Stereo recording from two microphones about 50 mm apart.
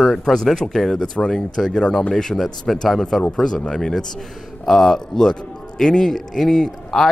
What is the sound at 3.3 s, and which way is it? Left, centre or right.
A man's voice, centre.